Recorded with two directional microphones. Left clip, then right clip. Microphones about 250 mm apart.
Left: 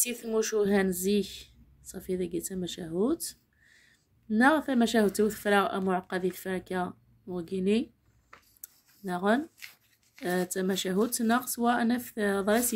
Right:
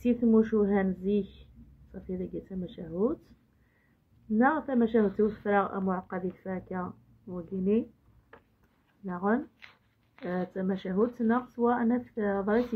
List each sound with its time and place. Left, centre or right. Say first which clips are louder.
0.1 s speech: right 6 dB; left
4.3 s speech: left 2 dB; left
8.5 s a sound: left 7 dB; left
9.6 s speech: left 5 dB; centre
10.2 s speech: left 3 dB; left